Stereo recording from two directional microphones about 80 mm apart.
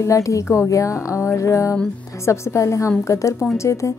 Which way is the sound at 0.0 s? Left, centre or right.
Left.